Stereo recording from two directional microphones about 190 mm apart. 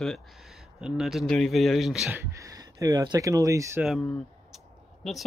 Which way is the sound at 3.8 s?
Centre (ahead or behind).